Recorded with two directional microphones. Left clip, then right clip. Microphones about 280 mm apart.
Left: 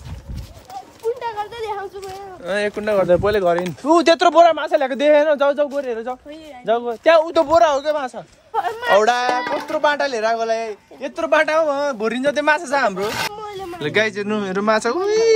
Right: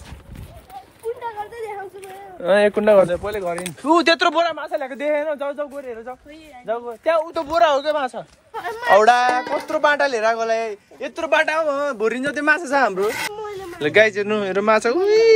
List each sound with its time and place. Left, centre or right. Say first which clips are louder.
2.4 s speech: right 6 dB; centre
3.3 s speech: left 8 dB; left
3.8 s speech: left 2 dB; centre
4.6 s speech: left 7 dB; left
7.4 s speech: left 2 dB; centre